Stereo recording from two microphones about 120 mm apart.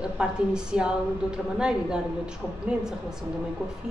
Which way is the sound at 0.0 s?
5° right (ahead or behind).